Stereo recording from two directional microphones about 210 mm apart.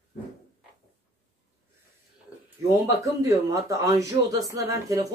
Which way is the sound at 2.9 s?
15° right (ahead or behind).